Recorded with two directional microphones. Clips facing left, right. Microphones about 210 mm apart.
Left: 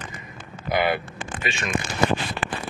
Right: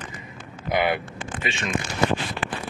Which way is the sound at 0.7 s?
20° right (ahead or behind).